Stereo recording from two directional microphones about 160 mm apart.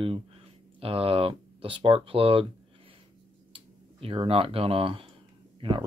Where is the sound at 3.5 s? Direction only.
35° right (ahead or behind).